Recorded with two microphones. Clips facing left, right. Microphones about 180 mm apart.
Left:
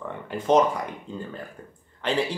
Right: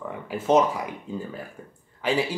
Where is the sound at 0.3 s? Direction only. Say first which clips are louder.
Even; 5° right (ahead or behind).